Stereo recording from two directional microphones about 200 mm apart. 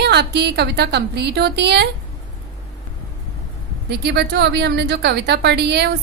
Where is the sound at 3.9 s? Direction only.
55° right (ahead or behind).